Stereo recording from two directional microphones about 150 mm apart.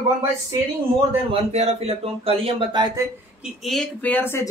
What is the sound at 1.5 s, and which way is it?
Speech, 45° right (ahead or behind).